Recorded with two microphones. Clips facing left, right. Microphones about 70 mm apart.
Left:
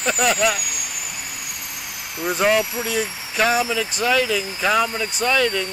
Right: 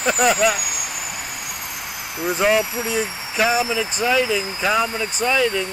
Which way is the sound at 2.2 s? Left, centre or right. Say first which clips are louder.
Even; centre.